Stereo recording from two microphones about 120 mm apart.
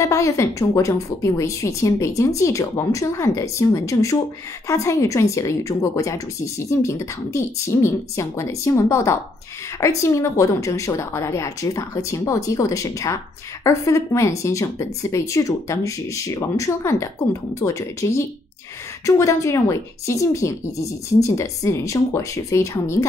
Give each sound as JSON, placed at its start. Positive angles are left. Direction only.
{"t": 0.0, "sound": "speech", "side_deg": 25}